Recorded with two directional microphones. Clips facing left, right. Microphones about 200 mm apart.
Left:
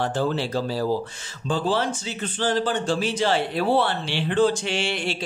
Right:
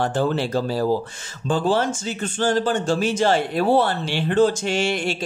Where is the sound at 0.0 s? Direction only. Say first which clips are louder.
Right 3 dB; 50° right (ahead or behind).